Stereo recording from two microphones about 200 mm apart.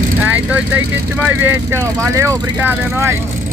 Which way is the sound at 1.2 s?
10° right (ahead or behind).